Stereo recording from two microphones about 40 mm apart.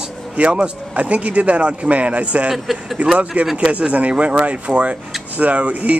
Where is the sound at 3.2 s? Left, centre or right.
Right.